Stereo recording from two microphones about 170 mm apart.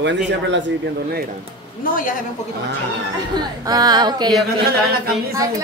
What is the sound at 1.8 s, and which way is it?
Speech, 55° left (ahead or behind).